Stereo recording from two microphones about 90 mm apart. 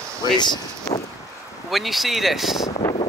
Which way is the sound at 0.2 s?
55° left (ahead or behind).